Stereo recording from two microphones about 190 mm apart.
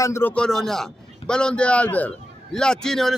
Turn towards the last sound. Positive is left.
turn(degrees=5)  # may be behind; listen again after turning